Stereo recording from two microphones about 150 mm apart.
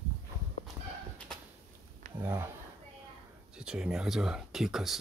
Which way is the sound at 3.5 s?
5° right (ahead or behind).